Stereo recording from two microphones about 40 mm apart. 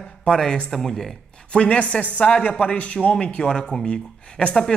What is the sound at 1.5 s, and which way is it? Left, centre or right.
Speech, left.